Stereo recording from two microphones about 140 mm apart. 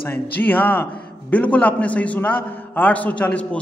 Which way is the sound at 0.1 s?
10° left (ahead or behind).